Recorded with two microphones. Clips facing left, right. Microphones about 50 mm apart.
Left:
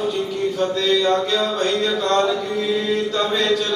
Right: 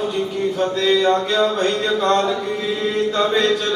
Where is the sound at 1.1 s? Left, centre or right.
Centre.